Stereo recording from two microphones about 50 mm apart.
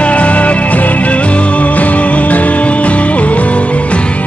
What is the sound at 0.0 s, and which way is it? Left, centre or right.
Music, left.